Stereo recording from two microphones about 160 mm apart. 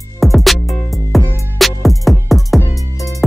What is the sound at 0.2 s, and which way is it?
Music, centre (ahead or behind).